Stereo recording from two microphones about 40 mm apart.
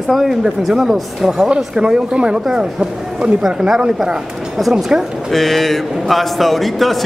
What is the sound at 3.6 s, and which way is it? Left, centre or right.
A man's voice, centre.